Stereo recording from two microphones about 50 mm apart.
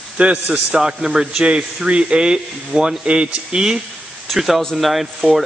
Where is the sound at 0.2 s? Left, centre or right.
Right.